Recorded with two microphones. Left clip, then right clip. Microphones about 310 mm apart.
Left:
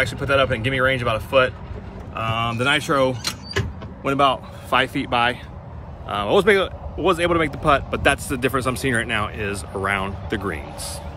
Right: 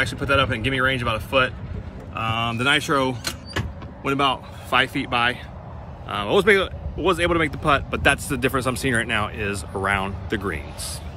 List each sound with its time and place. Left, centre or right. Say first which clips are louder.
0.0 s speech: left 1 dB; centre